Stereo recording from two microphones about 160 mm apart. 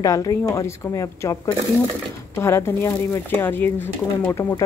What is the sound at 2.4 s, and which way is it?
Speech, 15° left (ahead or behind).